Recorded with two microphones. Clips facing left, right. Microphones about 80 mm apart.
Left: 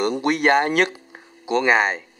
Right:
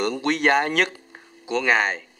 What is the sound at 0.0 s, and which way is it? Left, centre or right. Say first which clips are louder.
Speech: left 2 dB; centre.